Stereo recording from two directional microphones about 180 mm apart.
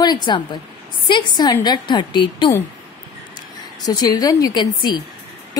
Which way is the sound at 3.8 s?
20° left (ahead or behind).